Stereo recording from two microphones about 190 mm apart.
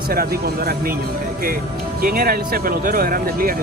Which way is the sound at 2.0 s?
50° right (ahead or behind).